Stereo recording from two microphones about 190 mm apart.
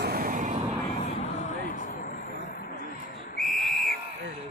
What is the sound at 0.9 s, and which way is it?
Vehicle, 35° left (ahead or behind).